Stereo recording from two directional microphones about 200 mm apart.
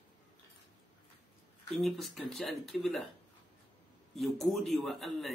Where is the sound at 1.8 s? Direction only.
Centre (ahead or behind).